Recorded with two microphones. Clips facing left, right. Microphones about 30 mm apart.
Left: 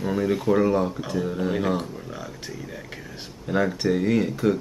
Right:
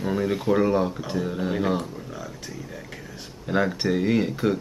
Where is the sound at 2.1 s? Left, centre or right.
Centre.